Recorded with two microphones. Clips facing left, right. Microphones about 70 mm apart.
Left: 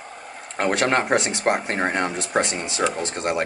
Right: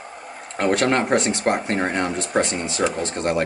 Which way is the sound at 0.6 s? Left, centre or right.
Centre.